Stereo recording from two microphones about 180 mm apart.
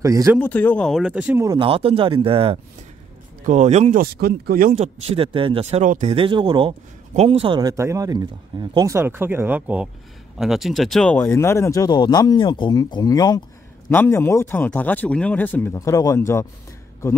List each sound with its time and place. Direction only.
0.0 s speech: 15° right (ahead or behind)
0.4 s speech: 10° left (ahead or behind); by 1.4 s 5° right (ahead or behind)
1.4 s speech: 25° right (ahead or behind); by 4.0 s 40° right (ahead or behind)
4.0 s speech: 55° right (ahead or behind); by 6.1 s 40° right (ahead or behind)
6.1 s speech: 25° right (ahead or behind); by 16.4 s 15° left (ahead or behind)